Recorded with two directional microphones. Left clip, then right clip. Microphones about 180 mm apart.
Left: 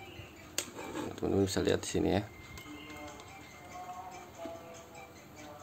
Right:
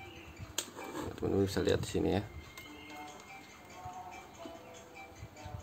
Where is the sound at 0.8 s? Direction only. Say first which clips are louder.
Left 2 dB; 30° left (ahead or behind).